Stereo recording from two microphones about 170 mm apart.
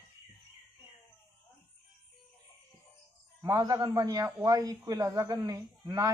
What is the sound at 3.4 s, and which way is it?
A man's voice, 20° right (ahead or behind).